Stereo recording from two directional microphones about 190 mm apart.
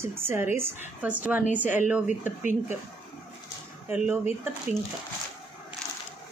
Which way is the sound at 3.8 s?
10° right (ahead or behind).